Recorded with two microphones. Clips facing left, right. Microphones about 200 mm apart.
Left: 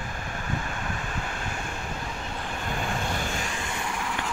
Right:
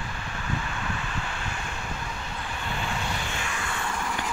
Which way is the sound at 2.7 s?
45° left (ahead or behind).